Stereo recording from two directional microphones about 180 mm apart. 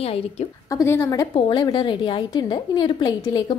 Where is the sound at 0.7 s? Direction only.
15° left (ahead or behind).